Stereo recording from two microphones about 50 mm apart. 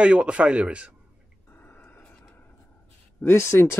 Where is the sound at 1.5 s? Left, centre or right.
Left.